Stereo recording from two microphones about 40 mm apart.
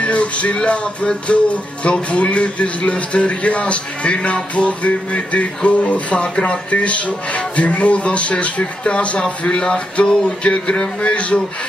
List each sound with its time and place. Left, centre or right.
0.0 s music: left
9.4 s speech: left